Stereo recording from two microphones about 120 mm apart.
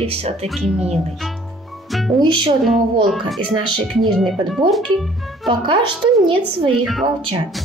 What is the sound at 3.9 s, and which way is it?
Speech, centre (ahead or behind).